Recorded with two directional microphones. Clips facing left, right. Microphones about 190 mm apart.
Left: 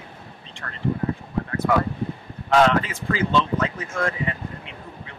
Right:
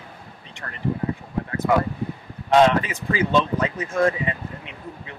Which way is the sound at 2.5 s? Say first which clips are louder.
Right 2 dB; 20° right (ahead or behind).